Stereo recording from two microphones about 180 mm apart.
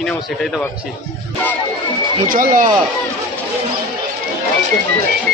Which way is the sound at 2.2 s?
50° right (ahead or behind).